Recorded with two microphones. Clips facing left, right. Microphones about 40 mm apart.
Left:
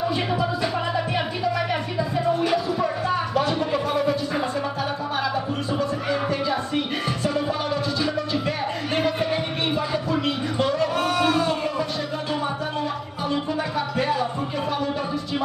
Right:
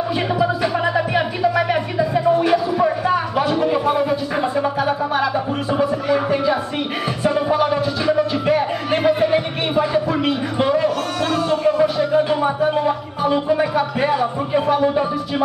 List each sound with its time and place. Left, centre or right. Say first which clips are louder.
0.9 s music: right 6 dB; centre
6.3 s a sound: right 6 dB; centre
7.2 s music: right 9 dB; centre
11.1 s a sound: right 2 dB; centre
11.8 s music: right 11 dB; centre
13.5 s speech: right 8 dB; right